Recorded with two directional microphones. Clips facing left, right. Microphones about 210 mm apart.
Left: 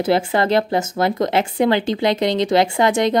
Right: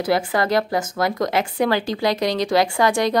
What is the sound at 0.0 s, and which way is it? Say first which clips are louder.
Speech: left 3 dB; 25° left (ahead or behind).